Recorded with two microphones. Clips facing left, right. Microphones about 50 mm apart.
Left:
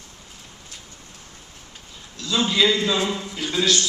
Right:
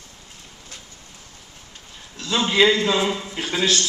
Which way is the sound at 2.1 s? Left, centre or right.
Right.